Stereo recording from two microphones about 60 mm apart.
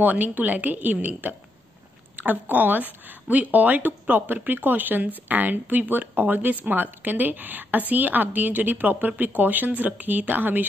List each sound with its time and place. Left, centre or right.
0.0 s speech: right